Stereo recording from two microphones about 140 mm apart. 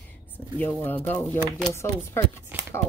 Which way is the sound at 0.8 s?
15° left (ahead or behind).